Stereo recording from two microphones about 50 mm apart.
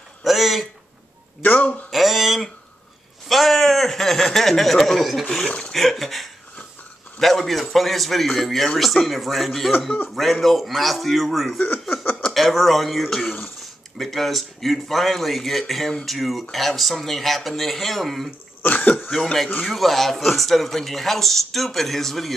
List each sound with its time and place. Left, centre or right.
0.2 s a sound: centre
1.4 s a man's voice: left
1.9 s a sound: centre
5.7 s speech: centre
11.5 s speech: left
12.4 s speech: centre
18.6 s speech: left
18.9 s speech: centre